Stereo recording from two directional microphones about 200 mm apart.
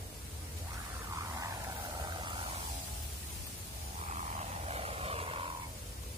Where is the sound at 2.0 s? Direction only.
20° right (ahead or behind).